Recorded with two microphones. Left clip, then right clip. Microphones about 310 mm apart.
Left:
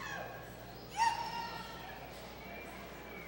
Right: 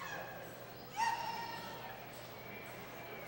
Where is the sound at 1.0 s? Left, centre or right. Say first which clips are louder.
Left 4 dB; left.